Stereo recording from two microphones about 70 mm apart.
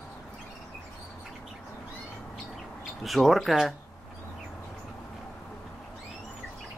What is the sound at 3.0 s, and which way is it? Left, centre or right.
Speech, centre.